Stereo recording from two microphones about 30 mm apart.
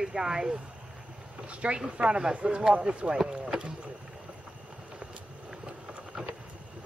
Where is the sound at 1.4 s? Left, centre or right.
Right.